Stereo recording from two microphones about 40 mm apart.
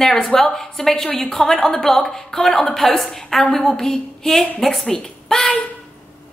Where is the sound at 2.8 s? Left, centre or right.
Centre.